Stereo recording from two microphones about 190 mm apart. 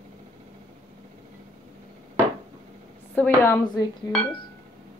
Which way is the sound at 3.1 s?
10° left (ahead or behind).